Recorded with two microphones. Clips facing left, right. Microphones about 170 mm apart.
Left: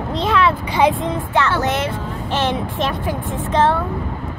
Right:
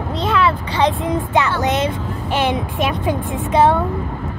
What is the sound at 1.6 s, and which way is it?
Speech, 15° right (ahead or behind).